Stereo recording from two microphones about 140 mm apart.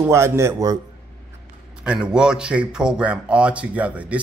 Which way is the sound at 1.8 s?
5° right (ahead or behind).